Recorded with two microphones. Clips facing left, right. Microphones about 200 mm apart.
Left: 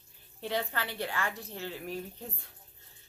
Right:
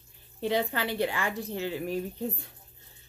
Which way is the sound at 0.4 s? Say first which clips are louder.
Right 6 dB; 15° right (ahead or behind).